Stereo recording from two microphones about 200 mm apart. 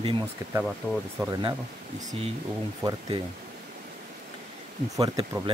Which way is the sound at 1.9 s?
30° right (ahead or behind).